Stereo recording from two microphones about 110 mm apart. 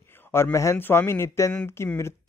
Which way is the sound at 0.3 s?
25° left (ahead or behind).